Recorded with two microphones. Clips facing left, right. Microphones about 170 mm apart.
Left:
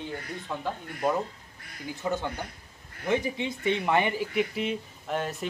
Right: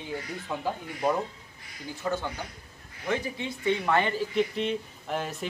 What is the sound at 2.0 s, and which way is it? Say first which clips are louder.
Speech: even; 15° left (ahead or behind).